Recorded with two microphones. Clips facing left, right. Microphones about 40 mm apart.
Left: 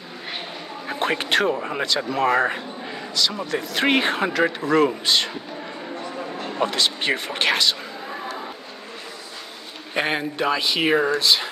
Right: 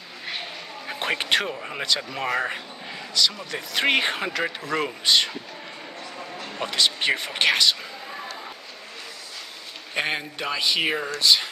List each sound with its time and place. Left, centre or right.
0.4 s a man's voice: centre
5.9 s a sound: left
6.6 s a man's voice: centre
9.9 s a man's voice: centre